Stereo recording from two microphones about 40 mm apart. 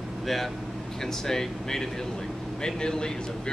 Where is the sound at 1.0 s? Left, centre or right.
Centre.